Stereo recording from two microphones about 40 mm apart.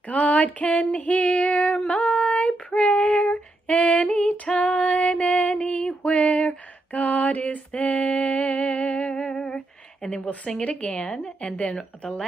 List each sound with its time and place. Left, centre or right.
0.1 s speech: left
0.9 s female singing: left
7.2 s music: left
10.0 s speech: left
11.0 s speech: left